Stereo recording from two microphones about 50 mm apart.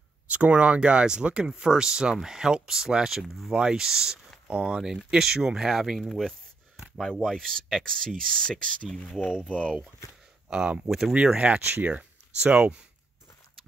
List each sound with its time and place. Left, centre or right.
0.3 s speech: right
4.5 s speech: right
4.8 s speech: centre
6.0 s speech: centre; by 9.8 s left
10.5 s speech: centre
10.9 s speech: centre
11.3 s speech: right